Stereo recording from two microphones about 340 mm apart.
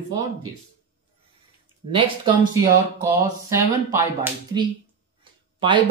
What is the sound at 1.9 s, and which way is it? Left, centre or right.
Speech, centre.